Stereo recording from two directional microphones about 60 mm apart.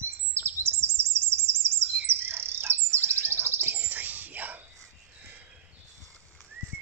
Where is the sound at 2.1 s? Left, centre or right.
Right.